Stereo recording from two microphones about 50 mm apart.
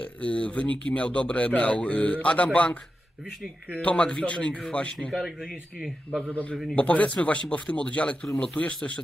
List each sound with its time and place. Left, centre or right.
0.0 s speech: left
3.8 s speech: left
6.3 s a man's voice: left